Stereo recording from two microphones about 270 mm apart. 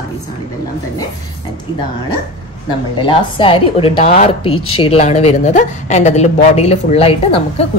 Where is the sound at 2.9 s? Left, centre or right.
Centre.